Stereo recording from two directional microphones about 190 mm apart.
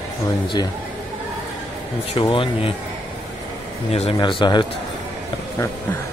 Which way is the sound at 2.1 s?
25° left (ahead or behind).